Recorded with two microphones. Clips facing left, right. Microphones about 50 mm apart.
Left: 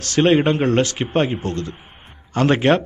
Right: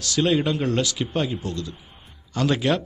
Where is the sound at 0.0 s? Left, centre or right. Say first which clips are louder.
Left 6 dB; left.